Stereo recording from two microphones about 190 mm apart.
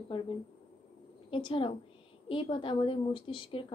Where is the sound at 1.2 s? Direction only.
25° left (ahead or behind).